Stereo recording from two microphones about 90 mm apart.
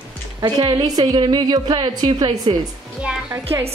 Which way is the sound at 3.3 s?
30° right (ahead or behind).